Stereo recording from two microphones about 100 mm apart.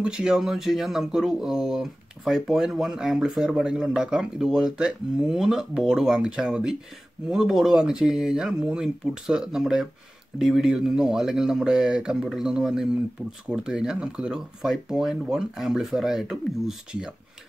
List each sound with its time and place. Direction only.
0.0 s speech: 10° right (ahead or behind)